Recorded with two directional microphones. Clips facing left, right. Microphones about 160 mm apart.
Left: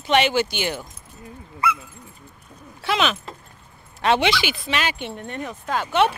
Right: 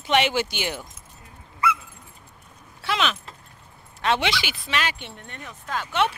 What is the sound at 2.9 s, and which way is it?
Speech, 15° left (ahead or behind).